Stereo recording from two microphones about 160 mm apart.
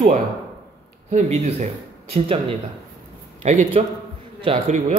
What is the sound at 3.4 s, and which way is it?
Speech, 45° right (ahead or behind).